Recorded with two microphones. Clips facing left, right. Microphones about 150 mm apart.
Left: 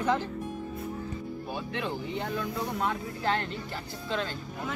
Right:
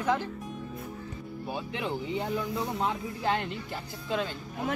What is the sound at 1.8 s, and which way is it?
A man's voice, 15° right (ahead or behind).